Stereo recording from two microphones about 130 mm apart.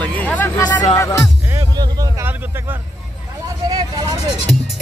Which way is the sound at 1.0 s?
25° left (ahead or behind).